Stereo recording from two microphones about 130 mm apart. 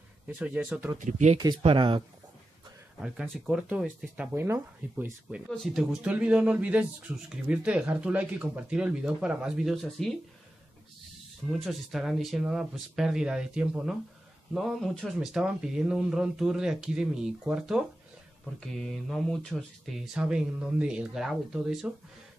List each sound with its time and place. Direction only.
0.4 s speech: 10° right (ahead or behind)
0.9 s speech: 75° right (ahead or behind)
1.6 s speech: 45° right (ahead or behind)
3.0 s speech: 5° right (ahead or behind); by 5.1 s 20° right (ahead or behind)
5.5 s speech: centre (ahead or behind)
11.6 s speech: centre (ahead or behind)